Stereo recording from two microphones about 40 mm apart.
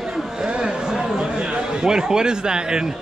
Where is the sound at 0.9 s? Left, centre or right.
Centre.